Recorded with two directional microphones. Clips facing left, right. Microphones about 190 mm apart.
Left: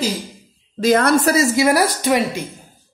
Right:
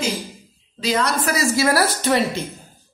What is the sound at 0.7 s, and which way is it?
Speech, 50° left (ahead or behind).